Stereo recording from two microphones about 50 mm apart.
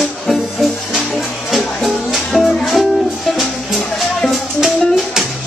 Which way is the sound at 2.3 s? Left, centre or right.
Centre.